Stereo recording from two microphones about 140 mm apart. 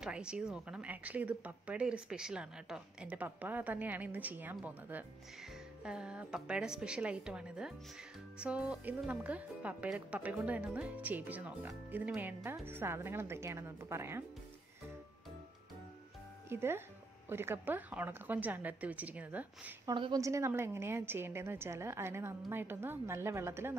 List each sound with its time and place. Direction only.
0.0 s speech: 5° right (ahead or behind)
16.4 s speech: 15° right (ahead or behind)
19.9 s a woman's voice: 30° right (ahead or behind)